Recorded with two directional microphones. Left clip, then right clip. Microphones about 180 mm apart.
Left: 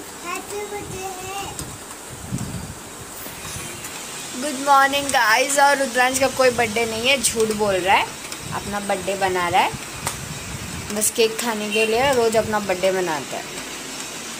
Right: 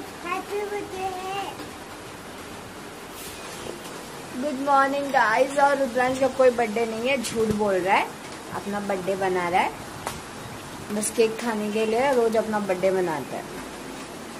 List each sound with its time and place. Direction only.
4.6 s speech: 5° left (ahead or behind)
11.1 s speech: centre (ahead or behind)